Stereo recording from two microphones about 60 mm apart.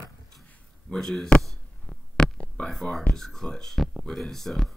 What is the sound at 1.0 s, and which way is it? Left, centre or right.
Speech, centre.